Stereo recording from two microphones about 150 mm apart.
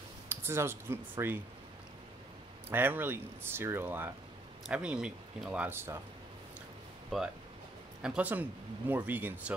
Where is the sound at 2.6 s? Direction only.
15° right (ahead or behind).